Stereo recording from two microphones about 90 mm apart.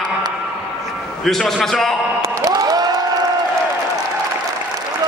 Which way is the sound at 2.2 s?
40° right (ahead or behind).